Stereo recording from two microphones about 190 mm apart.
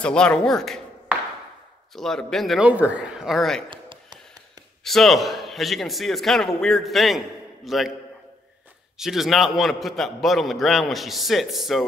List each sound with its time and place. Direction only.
0.0 s a man's voice: 5° left (ahead or behind)
2.0 s a man's voice: 5° left (ahead or behind)
3.7 s a sound: 25° right (ahead or behind)
4.8 s a man's voice: centre (ahead or behind)
8.9 s a man's voice: centre (ahead or behind)